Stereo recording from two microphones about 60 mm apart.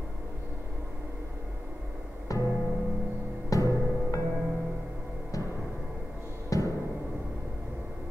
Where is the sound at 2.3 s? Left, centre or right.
Left.